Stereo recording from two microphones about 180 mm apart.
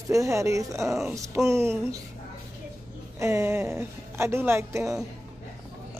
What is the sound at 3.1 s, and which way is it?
Speech, 15° right (ahead or behind).